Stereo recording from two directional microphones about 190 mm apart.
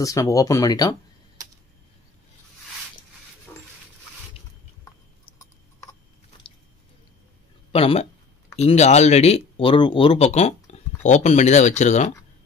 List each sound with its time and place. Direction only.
0.0 s speech: 15° left (ahead or behind)
7.7 s speech: 30° left (ahead or behind)